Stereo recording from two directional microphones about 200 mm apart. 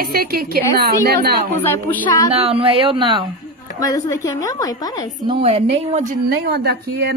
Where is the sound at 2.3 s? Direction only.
30° right (ahead or behind).